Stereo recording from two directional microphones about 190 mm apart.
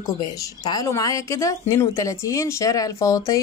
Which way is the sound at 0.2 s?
20° left (ahead or behind).